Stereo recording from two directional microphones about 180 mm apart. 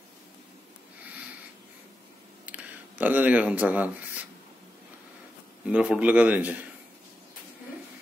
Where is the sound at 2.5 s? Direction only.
10° right (ahead or behind).